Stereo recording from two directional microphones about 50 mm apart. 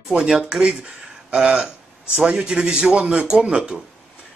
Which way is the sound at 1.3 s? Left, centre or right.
Centre.